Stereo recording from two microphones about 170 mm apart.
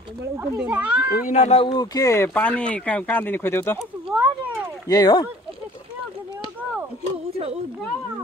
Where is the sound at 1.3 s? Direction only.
40° left (ahead or behind).